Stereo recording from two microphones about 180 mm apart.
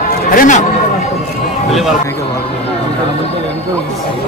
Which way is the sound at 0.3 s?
45° left (ahead or behind).